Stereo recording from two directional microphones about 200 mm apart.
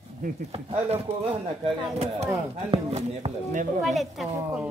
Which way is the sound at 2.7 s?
35° right (ahead or behind).